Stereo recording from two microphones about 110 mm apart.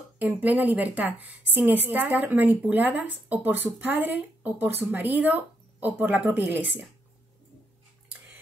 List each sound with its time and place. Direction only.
0.2 s speech: 15° right (ahead or behind)